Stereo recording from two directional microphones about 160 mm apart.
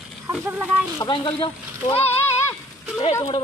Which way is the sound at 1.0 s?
30° left (ahead or behind).